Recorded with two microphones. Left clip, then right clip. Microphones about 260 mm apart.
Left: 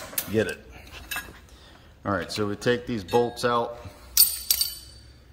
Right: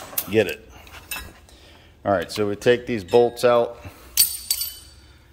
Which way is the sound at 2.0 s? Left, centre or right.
Centre.